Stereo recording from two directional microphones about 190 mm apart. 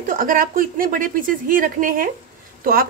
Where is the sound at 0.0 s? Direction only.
45° right (ahead or behind).